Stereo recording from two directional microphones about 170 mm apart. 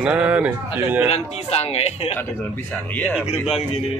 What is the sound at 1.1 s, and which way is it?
Speech, 40° left (ahead or behind).